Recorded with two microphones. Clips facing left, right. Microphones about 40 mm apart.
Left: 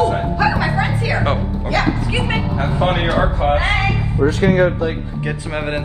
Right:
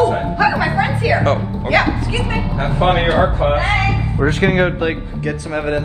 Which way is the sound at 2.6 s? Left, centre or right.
Right.